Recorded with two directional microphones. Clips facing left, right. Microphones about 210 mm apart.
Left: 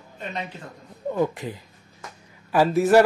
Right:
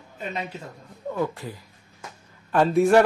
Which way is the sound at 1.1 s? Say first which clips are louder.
Left 3 dB; 20° left (ahead or behind).